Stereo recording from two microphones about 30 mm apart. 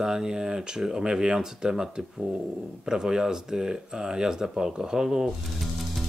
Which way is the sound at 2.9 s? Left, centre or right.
Right.